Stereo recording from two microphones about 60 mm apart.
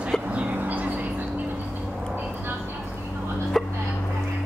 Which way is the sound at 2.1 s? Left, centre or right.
Right.